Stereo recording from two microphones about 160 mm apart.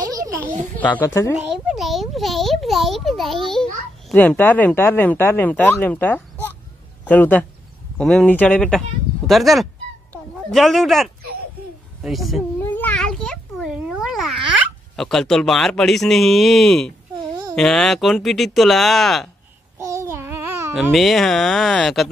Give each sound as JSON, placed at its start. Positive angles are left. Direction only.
{"t": 0.7, "sound": "speech", "side_deg": 10}
{"t": 1.3, "sound": "a child's voice", "side_deg": 0}
{"t": 12.5, "sound": "a sound", "side_deg": 10}
{"t": 15.0, "sound": "a child's voice", "side_deg": 0}
{"t": 17.1, "sound": "a sound", "side_deg": -25}
{"t": 17.6, "sound": "a child's voice", "side_deg": 5}
{"t": 19.8, "sound": "babbling", "side_deg": -20}
{"t": 20.7, "sound": "a child's voice", "side_deg": 0}